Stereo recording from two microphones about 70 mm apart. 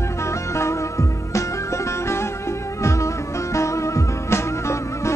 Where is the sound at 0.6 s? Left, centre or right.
Left.